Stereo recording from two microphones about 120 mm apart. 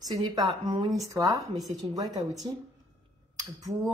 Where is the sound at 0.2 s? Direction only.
35° right (ahead or behind).